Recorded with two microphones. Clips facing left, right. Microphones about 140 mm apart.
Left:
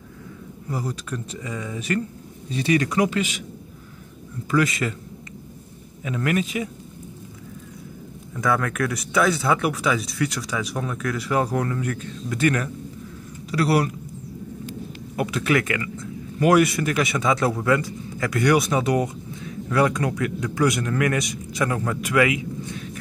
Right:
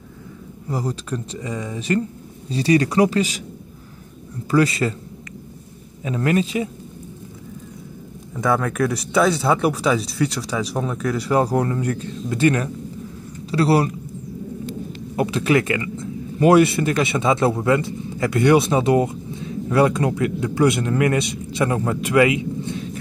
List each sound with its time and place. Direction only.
0.7 s speech: 30° right (ahead or behind)
4.5 s speech: 35° right (ahead or behind)
6.0 s speech: 30° right (ahead or behind)
8.4 s speech: 25° right (ahead or behind)
15.1 s speech: 25° right (ahead or behind)